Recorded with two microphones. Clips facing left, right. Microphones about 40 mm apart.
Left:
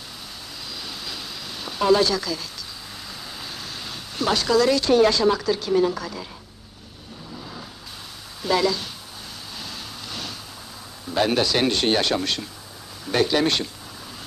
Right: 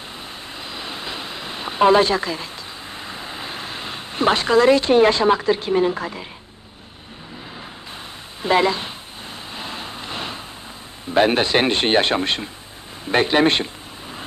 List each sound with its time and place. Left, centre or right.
0.7 s a sound: right
3.0 s speech: right
8.4 s speech: right
9.6 s vehicle: right
11.1 s speech: right